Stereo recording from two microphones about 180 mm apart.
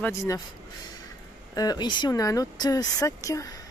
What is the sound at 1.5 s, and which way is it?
Speech, 20° left (ahead or behind).